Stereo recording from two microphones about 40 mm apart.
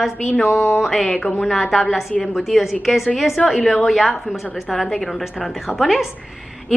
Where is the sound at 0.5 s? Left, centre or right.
Left.